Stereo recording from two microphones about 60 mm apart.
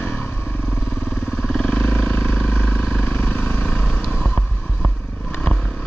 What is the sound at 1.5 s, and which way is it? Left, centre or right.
Vehicle, centre.